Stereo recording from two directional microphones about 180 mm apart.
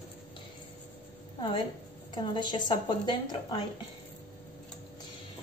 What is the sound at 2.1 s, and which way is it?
A woman's voice, 25° left (ahead or behind).